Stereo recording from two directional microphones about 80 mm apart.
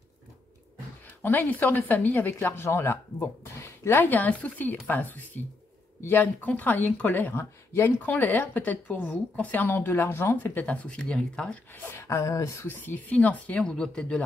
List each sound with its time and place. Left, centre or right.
1.2 s a woman's voice: left
11.8 s speech: left
12.6 s speech: left